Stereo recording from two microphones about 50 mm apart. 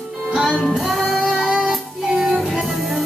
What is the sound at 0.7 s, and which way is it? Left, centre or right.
Music, centre.